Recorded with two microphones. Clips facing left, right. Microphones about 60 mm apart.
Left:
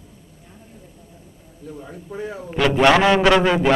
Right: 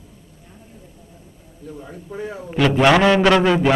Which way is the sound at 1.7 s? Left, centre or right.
Centre.